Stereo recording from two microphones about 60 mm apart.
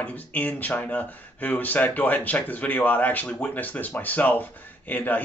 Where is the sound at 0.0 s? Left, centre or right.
Left.